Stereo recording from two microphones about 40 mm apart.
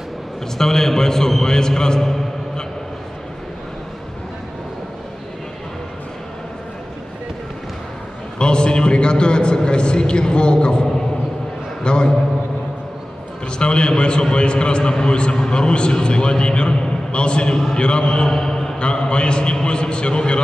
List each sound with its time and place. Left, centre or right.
0.6 s a man's voice: centre
8.4 s a man's voice: left
13.6 s a man's voice: left
18.3 s mantra: centre
18.8 s a man's voice: left